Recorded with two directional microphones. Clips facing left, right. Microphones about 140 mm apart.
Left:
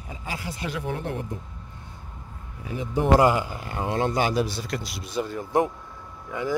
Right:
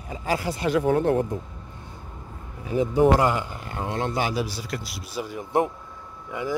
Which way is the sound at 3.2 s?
5° left (ahead or behind).